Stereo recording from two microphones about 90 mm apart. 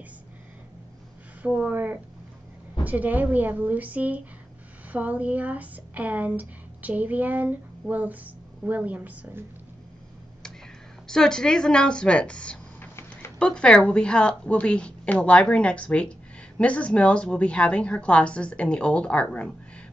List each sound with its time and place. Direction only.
1.4 s speech: 10° right (ahead or behind)
1.7 s speech: 20° right (ahead or behind)
11.1 s a woman's voice: 5° left (ahead or behind)